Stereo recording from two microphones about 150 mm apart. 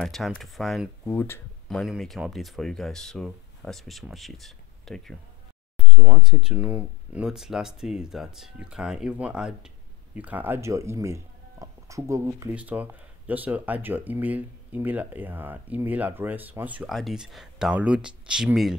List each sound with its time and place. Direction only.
0.0 s speech: centre (ahead or behind)
1.1 s speech: 15° left (ahead or behind)
1.7 s speech: centre (ahead or behind)